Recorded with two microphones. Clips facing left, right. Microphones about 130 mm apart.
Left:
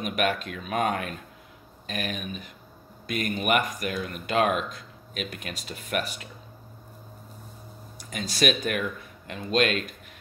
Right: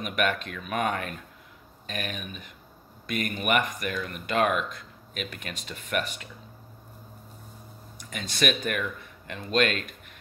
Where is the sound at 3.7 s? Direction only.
50° right (ahead or behind).